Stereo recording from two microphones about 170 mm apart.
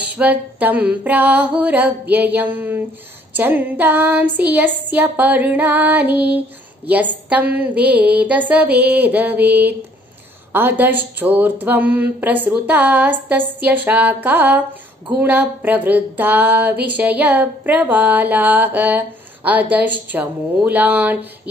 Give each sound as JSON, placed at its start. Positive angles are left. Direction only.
{"t": 0.0, "sound": "speech", "side_deg": -10}